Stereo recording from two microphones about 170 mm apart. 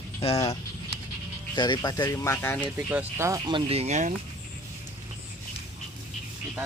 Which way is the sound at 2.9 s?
15° right (ahead or behind).